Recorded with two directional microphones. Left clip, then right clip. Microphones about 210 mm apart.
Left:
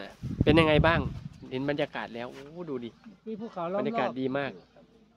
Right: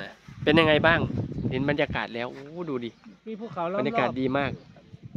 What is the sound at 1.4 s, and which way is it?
Speech, 30° right (ahead or behind).